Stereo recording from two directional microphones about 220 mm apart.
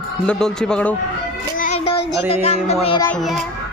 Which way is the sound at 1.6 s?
30° left (ahead or behind).